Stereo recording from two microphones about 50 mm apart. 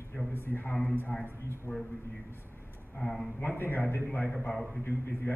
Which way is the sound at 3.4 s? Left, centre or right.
Left.